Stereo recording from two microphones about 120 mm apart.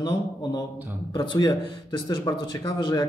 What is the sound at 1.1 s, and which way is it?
A man's voice, 35° left (ahead or behind).